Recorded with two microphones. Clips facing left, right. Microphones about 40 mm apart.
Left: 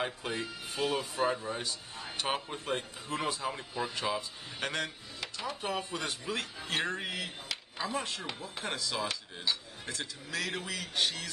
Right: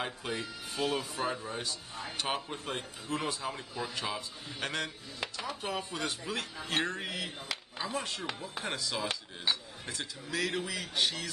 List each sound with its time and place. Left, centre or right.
0.0 s speech: centre
9.1 s a sound: right
9.8 s speech: centre